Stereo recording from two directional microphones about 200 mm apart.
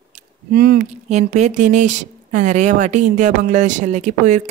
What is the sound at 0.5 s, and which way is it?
Speech, 45° right (ahead or behind).